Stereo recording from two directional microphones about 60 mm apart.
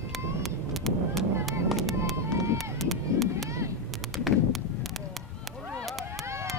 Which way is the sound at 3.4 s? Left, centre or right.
Right.